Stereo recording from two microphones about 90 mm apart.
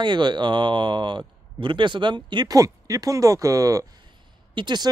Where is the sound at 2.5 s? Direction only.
40° right (ahead or behind).